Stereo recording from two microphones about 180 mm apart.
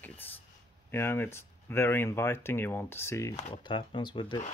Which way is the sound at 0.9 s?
15° left (ahead or behind).